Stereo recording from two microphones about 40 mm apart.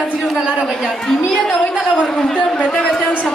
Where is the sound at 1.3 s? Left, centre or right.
Centre.